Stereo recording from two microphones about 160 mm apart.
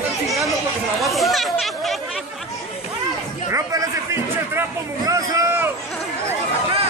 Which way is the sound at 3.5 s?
20° right (ahead or behind).